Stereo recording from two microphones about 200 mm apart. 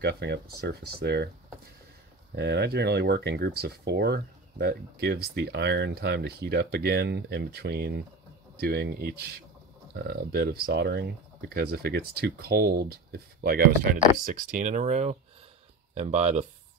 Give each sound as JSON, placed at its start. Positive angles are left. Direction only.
{"t": 0.0, "sound": "speech", "side_deg": -55}
{"t": 2.3, "sound": "speech", "side_deg": -55}
{"t": 14.2, "sound": "speech", "side_deg": -40}